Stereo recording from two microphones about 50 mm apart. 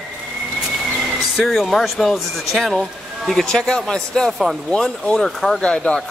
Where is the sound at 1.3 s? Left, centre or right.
Centre.